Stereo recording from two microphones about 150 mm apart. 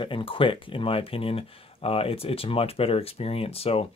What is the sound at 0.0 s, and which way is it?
Speech, 35° left (ahead or behind).